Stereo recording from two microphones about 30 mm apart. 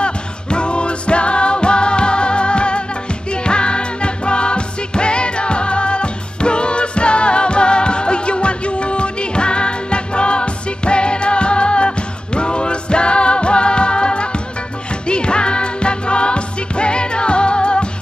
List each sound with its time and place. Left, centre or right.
0.0 s music: left